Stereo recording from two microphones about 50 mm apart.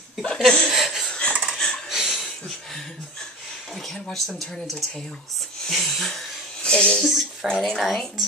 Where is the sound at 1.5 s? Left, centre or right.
Centre.